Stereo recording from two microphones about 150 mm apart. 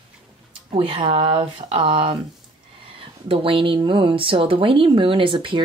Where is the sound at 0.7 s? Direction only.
35° right (ahead or behind).